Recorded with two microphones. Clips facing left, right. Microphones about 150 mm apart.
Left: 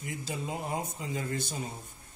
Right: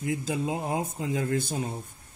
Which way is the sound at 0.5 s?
90° right.